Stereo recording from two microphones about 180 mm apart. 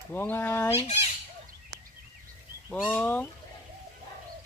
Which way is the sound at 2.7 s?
5° left (ahead or behind).